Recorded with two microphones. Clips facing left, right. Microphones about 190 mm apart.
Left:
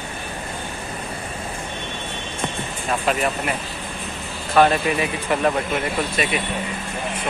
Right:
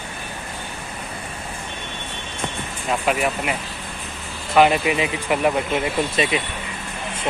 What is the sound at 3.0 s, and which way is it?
Speech, 10° right (ahead or behind).